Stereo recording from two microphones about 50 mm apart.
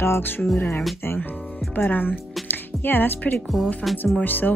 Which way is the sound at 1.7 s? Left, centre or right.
Left.